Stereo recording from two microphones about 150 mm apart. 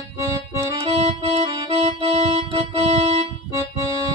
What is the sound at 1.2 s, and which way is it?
Music, 40° right (ahead or behind).